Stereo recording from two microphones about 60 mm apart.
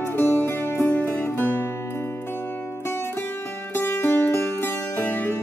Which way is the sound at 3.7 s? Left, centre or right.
Left.